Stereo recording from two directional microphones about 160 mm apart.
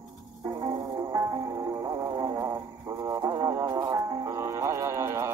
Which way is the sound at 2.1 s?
20° right (ahead or behind).